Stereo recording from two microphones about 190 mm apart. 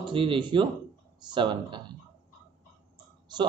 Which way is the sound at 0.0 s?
25° right (ahead or behind).